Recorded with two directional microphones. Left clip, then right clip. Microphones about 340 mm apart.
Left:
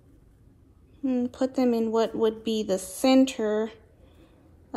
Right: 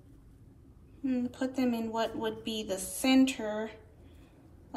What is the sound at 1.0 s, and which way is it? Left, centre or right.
Speech, centre.